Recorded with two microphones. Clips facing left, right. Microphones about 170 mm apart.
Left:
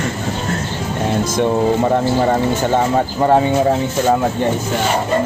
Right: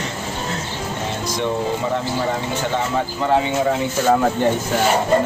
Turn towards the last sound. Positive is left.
turn(degrees=45)  # may be behind; listen again after turning